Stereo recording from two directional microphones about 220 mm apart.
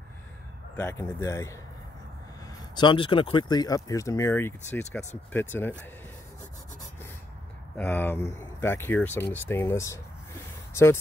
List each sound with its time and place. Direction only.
0.7 s speech: 10° left (ahead or behind)
7.7 s speech: 10° left (ahead or behind)